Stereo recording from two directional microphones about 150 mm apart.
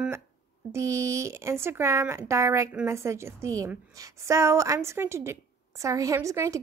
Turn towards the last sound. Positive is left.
turn(degrees=-20)  # may be behind; listen again after turning